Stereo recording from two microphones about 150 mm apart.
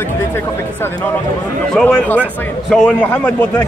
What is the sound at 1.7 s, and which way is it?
Speech, 10° left (ahead or behind).